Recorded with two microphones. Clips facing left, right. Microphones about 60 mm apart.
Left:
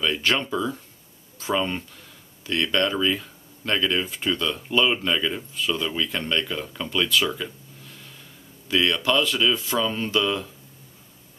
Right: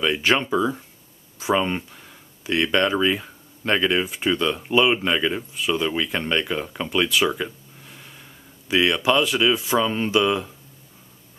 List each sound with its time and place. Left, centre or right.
0.0 s speech: centre